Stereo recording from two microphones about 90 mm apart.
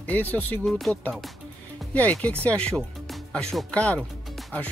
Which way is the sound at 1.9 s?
15° left (ahead or behind).